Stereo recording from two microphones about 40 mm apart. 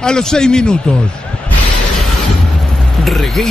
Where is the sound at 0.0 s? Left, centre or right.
Centre.